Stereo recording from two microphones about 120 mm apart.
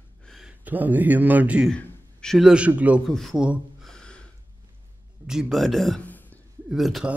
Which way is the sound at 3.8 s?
5° left (ahead or behind).